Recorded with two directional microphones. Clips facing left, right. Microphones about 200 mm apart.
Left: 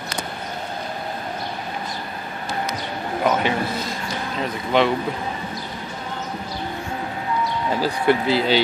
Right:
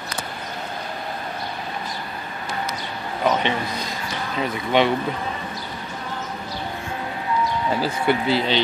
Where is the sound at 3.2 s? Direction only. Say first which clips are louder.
Left 1 dB; 5° left (ahead or behind).